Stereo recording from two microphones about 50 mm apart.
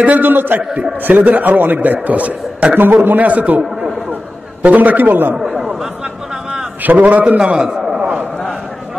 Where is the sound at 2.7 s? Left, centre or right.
Right.